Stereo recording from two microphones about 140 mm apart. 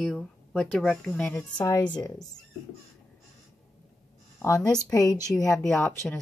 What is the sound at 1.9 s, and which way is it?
Speech, 25° left (ahead or behind).